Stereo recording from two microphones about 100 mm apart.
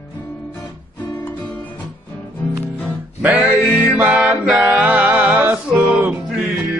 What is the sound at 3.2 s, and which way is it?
Mantra, 15° right (ahead or behind).